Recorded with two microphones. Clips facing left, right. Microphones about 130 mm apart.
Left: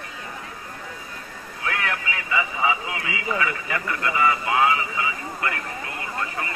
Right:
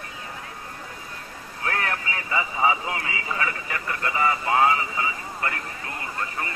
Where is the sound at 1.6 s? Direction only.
40° right (ahead or behind).